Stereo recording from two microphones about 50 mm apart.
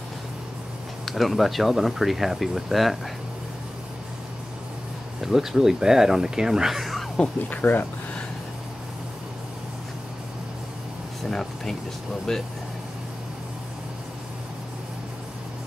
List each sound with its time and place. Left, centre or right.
1.0 s speech: centre
5.2 s speech: centre
7.4 s speech: left
11.2 s speech: centre